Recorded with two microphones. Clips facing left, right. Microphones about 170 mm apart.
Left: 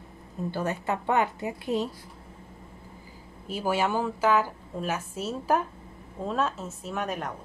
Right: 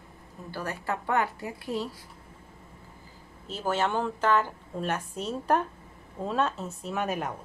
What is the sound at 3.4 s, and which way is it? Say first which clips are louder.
A woman's voice: left 2 dB; 10° left (ahead or behind).